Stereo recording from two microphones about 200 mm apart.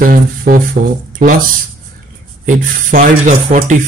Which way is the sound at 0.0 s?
45° right (ahead or behind).